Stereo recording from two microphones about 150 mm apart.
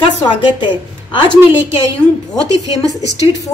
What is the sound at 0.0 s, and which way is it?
A woman's voice, 30° left (ahead or behind).